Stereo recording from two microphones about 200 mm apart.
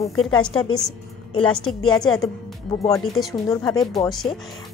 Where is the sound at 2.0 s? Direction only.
Centre (ahead or behind).